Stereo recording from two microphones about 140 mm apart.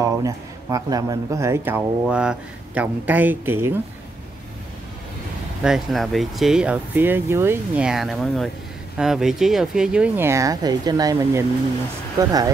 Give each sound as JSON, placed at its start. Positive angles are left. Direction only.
{"t": 0.0, "sound": "speech", "side_deg": -25}
{"t": 5.6, "sound": "speech", "side_deg": 0}